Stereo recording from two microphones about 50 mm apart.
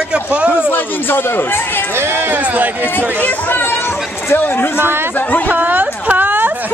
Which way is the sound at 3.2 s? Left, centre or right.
Left.